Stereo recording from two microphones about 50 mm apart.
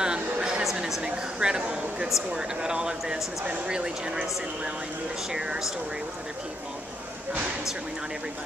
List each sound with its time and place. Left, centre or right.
0.0 s a sound: centre
0.7 s speech: centre
5.3 s speech: centre